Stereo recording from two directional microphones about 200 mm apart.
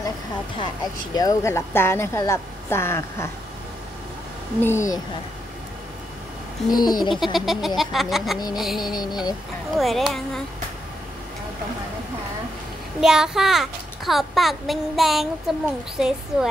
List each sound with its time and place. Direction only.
1.1 s speech: 15° left (ahead or behind)
4.6 s speech: 15° left (ahead or behind)
6.7 s a sound: 20° left (ahead or behind)
7.3 s a child's voice: centre (ahead or behind)
8.8 s a sound: 20° left (ahead or behind)
9.8 s a child's voice: centre (ahead or behind)
13.0 s a child's voice: 5° right (ahead or behind)